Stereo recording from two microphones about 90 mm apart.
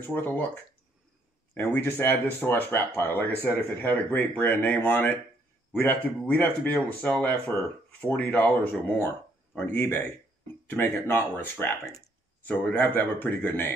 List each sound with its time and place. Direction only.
0.1 s speech: 20° left (ahead or behind)
1.5 s speech: 25° left (ahead or behind)